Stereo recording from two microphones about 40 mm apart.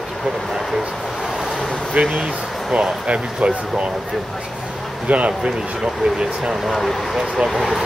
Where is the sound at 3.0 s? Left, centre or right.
Right.